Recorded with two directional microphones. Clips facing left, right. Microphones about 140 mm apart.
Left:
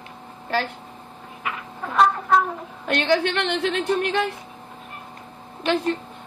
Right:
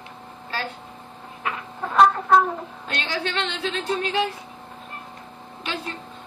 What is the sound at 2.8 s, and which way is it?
A woman's voice, 60° left (ahead or behind).